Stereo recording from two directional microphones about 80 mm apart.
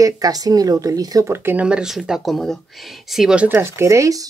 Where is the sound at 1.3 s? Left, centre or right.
Right.